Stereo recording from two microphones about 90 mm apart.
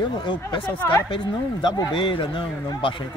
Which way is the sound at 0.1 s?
65° left (ahead or behind).